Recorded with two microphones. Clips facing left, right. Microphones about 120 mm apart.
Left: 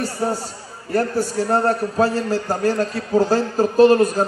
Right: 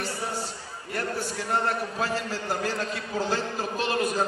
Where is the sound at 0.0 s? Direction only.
40° left (ahead or behind).